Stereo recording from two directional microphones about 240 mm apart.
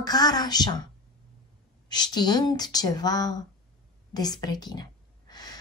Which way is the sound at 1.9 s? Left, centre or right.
Centre.